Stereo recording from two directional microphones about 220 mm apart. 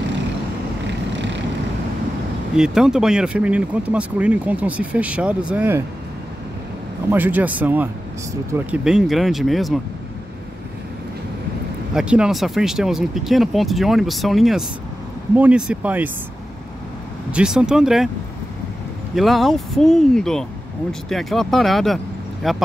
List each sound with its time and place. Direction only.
1.1 s vehicle: 55° right (ahead or behind)
2.5 s speech: 5° right (ahead or behind)
7.1 s speech: 10° right (ahead or behind)
11.9 s speech: 5° right (ahead or behind)
17.3 s speech: 5° right (ahead or behind)
19.1 s speech: centre (ahead or behind)